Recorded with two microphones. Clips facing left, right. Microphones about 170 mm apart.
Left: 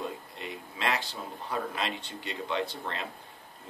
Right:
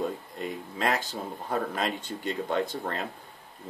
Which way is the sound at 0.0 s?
45° right (ahead or behind).